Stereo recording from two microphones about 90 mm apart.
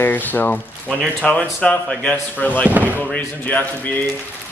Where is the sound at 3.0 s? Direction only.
20° left (ahead or behind).